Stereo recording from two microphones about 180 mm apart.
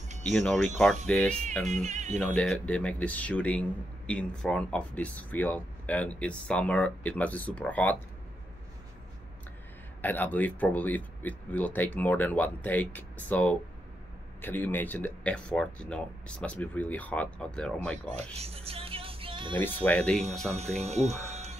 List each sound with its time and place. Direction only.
0.3 s speech: centre (ahead or behind)
1.7 s speech: 40° right (ahead or behind)
2.1 s speech: 5° left (ahead or behind)
10.0 s speech: 10° left (ahead or behind)
18.1 s speech: 35° right (ahead or behind)
19.6 s speech: 10° left (ahead or behind)
20.8 s speech: 40° right (ahead or behind)